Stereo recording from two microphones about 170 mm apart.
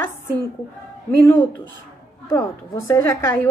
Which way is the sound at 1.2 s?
10° left (ahead or behind).